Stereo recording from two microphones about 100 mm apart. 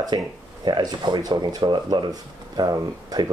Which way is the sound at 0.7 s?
45° right (ahead or behind).